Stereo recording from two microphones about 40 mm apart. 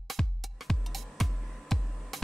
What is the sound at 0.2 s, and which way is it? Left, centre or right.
Music, centre.